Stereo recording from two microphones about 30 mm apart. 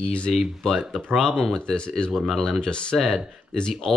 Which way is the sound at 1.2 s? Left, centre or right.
Centre.